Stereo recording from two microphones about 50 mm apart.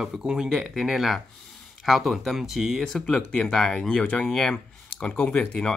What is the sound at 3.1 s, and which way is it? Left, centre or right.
Speech, centre.